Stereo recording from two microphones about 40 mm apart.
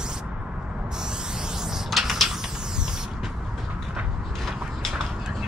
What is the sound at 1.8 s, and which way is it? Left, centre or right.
Mechanisms, centre.